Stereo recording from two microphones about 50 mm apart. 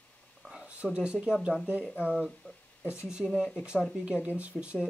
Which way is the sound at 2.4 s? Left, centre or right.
Left.